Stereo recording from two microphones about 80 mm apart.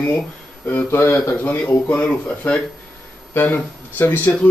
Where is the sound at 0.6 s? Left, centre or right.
Left.